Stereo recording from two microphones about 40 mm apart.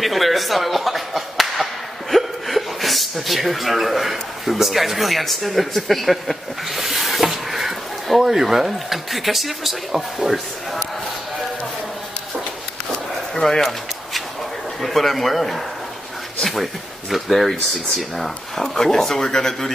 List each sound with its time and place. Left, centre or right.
0.0 s speech: centre
13.3 s a sound: centre
14.8 s speech: centre
17.1 s speech: centre